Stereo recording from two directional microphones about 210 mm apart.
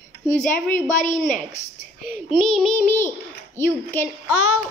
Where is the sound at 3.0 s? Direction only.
10° left (ahead or behind).